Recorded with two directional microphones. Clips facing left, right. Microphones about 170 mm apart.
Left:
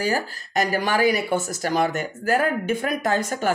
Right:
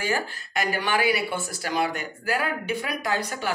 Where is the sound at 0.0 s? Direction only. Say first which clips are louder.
Left 3 dB; 40° left (ahead or behind).